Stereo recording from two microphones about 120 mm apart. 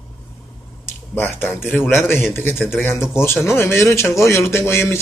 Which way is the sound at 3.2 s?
20° left (ahead or behind).